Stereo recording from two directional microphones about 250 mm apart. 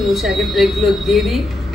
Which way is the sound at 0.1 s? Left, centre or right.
Centre.